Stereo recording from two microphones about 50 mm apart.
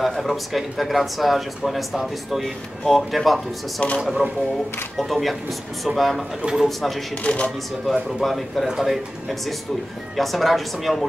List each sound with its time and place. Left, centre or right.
0.0 s speech: centre
4.9 s speech: centre
6.5 s speech: centre
7.2 s speech: left
7.9 s speech: centre